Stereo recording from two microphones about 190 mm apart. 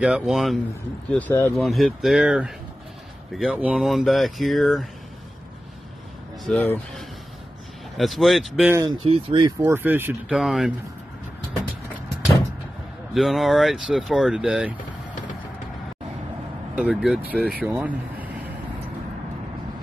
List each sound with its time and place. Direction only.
0.0 s speech: 5° right (ahead or behind)
1.1 s speech: 10° left (ahead or behind)
6.4 s speech: 5° left (ahead or behind)
8.7 s speech: 25° right (ahead or behind)
9.6 s speech: 10° right (ahead or behind)
13.1 s speech: centre (ahead or behind)
16.7 s speech: 5° right (ahead or behind)